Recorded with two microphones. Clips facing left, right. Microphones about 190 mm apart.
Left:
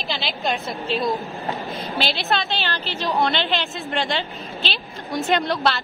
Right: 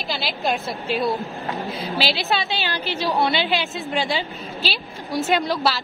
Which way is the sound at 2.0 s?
5° right (ahead or behind).